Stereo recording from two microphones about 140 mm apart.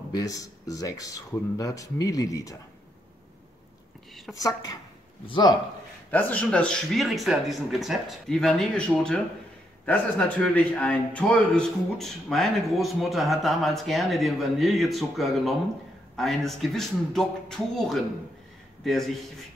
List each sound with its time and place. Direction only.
0.1 s speech: 25° left (ahead or behind)
4.4 s a man's voice: 25° left (ahead or behind)
6.0 s a man's voice: 10° left (ahead or behind)